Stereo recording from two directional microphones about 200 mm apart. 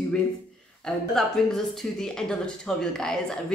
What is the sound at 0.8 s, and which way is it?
Speech, centre (ahead or behind).